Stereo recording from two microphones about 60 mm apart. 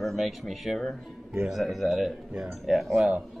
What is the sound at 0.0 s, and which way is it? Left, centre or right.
Speech, centre.